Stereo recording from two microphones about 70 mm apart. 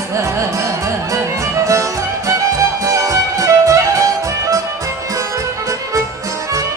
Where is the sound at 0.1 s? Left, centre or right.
Right.